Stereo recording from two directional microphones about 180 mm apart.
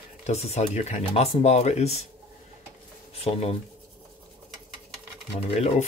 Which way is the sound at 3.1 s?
35° left (ahead or behind).